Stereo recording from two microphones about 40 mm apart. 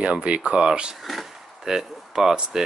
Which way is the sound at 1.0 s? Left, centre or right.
Centre.